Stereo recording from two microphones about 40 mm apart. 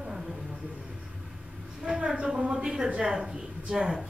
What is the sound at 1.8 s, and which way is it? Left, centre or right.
A woman's voice, right.